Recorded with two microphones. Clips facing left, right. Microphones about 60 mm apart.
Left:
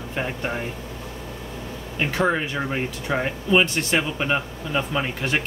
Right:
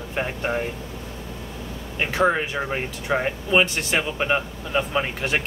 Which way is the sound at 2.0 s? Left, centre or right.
Centre.